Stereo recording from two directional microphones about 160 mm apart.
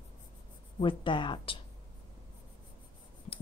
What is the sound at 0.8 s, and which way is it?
Speech, 30° left (ahead or behind).